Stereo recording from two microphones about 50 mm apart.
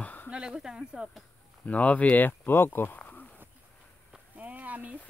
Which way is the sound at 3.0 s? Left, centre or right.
Left.